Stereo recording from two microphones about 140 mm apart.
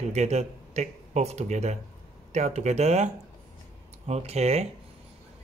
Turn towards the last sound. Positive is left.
turn(degrees=-50)  # may be behind; listen again after turning